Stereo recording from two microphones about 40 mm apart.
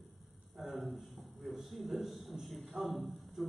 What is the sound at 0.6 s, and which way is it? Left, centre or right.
A man's voice, centre.